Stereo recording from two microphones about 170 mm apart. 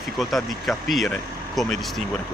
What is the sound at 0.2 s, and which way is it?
Speech, centre (ahead or behind).